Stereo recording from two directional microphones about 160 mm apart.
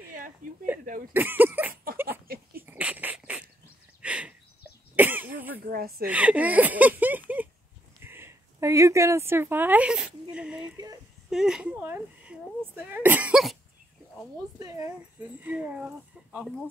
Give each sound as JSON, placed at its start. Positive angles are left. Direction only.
{"t": 1.1, "sound": "speech", "side_deg": -10}
{"t": 2.0, "sound": "a sound", "side_deg": -70}
{"t": 2.6, "sound": "dog", "side_deg": -10}
{"t": 4.0, "sound": "a sound", "side_deg": -10}
{"t": 4.9, "sound": "cough", "side_deg": -10}
{"t": 5.7, "sound": "speech", "side_deg": -70}
{"t": 6.0, "sound": "speech", "side_deg": -10}
{"t": 8.0, "sound": "a sound", "side_deg": -15}
{"t": 14.6, "sound": "speech", "side_deg": -15}